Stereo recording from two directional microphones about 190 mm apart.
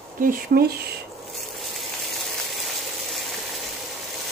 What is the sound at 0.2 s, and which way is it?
Speech, 50° right (ahead or behind).